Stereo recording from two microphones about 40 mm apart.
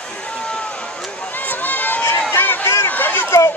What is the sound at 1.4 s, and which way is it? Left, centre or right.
Run, left.